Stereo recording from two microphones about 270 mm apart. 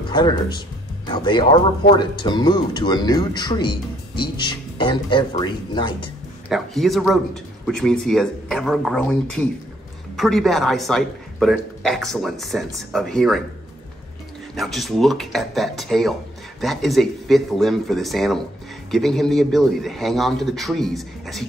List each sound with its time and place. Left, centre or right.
0.1 s speech: centre
6.5 s a man's voice: centre
14.5 s a man's voice: centre